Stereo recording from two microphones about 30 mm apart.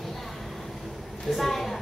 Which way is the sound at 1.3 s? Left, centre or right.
Centre.